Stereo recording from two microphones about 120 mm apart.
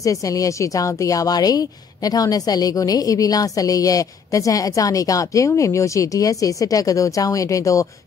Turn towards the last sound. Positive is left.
turn(degrees=25)  # may be behind; listen again after turning